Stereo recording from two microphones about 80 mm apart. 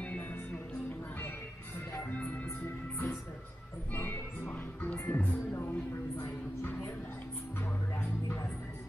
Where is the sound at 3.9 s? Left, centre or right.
Left.